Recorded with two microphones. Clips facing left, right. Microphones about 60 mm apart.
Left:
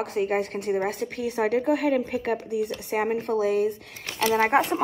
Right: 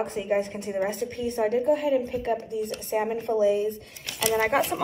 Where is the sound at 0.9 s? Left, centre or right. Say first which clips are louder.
Even; left.